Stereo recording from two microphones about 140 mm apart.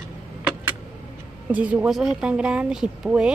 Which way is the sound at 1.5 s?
10° right (ahead or behind).